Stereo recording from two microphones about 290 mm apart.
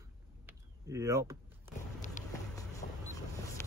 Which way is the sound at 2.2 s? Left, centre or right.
Left.